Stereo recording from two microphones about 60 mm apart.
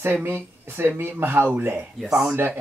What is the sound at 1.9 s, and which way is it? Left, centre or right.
Speech, centre.